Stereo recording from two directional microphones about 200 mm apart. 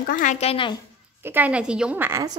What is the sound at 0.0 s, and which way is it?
Speech, 40° left (ahead or behind).